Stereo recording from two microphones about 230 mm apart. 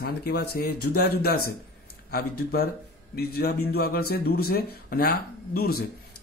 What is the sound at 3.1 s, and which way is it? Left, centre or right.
Speech, left.